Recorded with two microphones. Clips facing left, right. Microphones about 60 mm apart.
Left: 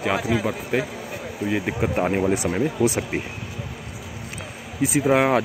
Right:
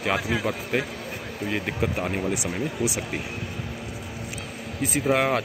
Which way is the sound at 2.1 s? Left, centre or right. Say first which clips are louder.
Left 6 dB; left.